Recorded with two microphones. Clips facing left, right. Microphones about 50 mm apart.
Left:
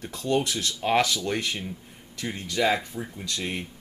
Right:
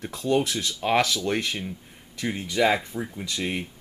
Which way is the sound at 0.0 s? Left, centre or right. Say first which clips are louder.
Right 2 dB; centre.